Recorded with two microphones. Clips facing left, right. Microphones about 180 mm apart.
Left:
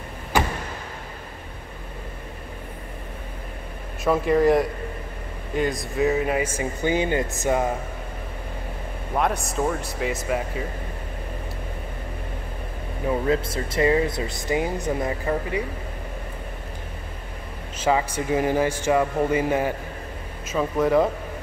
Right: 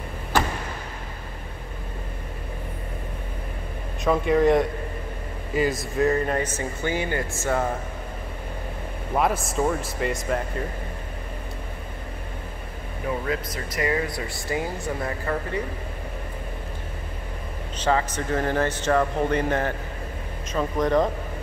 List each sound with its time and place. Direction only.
4.0 s speech: centre (ahead or behind)
9.1 s speech: centre (ahead or behind)
13.3 s speech: 25° left (ahead or behind)
17.7 s speech: 10° left (ahead or behind)